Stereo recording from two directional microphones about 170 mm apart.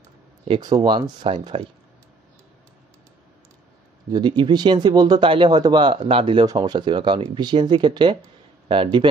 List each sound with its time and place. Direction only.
0.5 s speech: 25° right (ahead or behind)
4.1 s speech: 25° right (ahead or behind)